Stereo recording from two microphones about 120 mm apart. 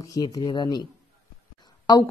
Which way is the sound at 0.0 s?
30° left (ahead or behind).